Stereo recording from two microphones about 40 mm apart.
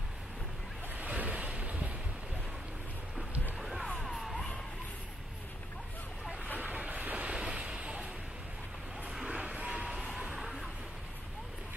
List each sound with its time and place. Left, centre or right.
0.9 s waves: right
3.5 s a sound: centre
4.0 s music: centre
6.9 s vehicle: right
7.3 s vehicle: right
9.3 s vehicle: right
9.9 s a sound: centre